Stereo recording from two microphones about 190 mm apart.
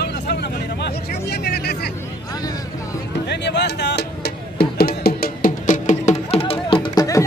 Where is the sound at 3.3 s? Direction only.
65° left (ahead or behind); by 7.3 s 20° left (ahead or behind).